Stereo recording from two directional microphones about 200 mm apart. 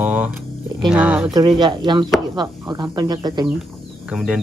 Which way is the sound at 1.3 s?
20° right (ahead or behind).